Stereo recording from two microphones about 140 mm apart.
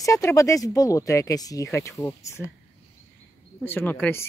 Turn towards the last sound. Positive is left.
turn(degrees=15)  # may be behind; listen again after turning